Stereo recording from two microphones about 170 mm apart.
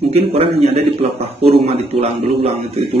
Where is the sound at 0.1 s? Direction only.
35° right (ahead or behind).